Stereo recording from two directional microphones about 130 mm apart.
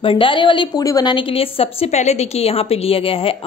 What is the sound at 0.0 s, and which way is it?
A woman's voice, 45° left (ahead or behind).